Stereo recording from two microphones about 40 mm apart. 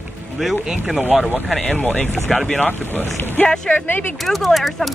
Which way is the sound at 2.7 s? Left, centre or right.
Left.